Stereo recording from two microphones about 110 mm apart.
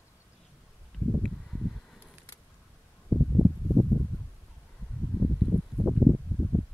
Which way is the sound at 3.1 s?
15° right (ahead or behind).